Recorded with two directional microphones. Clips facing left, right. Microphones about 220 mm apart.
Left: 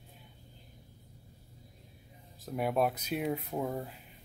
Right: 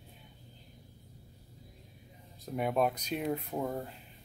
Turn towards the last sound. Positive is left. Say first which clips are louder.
# even
turn(degrees=0)  # may be behind; listen again after turning